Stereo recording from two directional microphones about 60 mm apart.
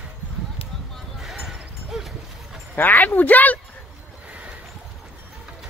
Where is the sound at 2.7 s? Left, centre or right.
Left.